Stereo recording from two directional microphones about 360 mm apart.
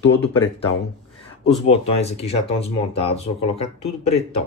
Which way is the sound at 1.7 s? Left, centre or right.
Centre.